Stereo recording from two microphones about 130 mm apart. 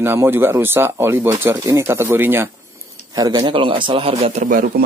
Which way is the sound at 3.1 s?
30° right (ahead or behind).